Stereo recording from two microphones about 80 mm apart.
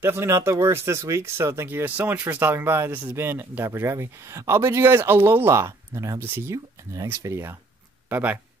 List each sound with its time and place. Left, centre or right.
0.0 s speech: right
8.1 s speech: right